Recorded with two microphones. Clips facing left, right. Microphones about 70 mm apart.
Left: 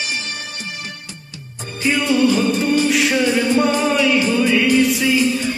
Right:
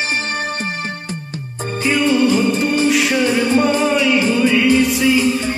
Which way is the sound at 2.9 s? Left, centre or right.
Centre.